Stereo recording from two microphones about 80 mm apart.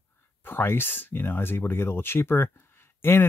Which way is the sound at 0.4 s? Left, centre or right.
Left.